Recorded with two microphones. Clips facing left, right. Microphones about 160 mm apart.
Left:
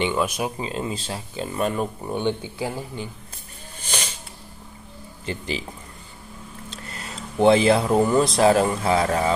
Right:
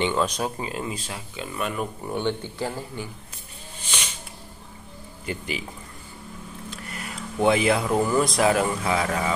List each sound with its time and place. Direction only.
0.0 s speech: 10° left (ahead or behind)
0.6 s speech: 25° left (ahead or behind)
2.0 s speech: 15° left (ahead or behind)
3.8 s a sound: 40° left (ahead or behind)
5.2 s speech: 30° left (ahead or behind)
6.7 s speech: 25° left (ahead or behind)